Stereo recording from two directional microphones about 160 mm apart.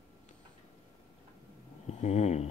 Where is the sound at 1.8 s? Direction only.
45° left (ahead or behind).